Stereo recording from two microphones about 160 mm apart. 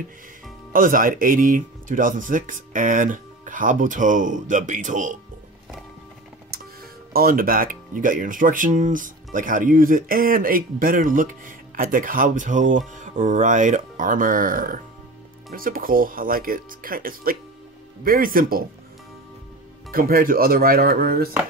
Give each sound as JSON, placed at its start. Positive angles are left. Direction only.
{"t": 0.7, "sound": "speech", "side_deg": -60}
{"t": 7.1, "sound": "speech", "side_deg": -65}
{"t": 19.9, "sound": "speech", "side_deg": -65}